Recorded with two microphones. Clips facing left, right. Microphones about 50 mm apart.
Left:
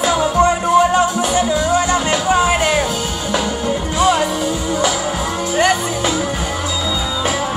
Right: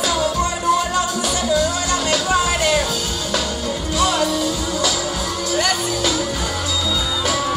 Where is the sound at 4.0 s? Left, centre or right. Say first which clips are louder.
Left 3 dB; left.